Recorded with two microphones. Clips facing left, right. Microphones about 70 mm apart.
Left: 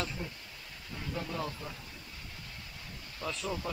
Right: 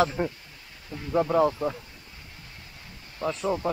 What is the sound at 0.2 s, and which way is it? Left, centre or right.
Speech, right.